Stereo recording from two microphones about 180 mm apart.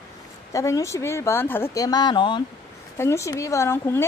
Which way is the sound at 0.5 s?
20° left (ahead or behind).